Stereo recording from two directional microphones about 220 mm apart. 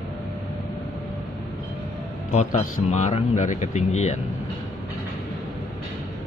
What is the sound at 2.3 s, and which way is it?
Speech, 35° left (ahead or behind).